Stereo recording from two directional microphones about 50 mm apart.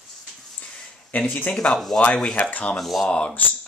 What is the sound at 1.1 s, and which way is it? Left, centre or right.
Speech, left.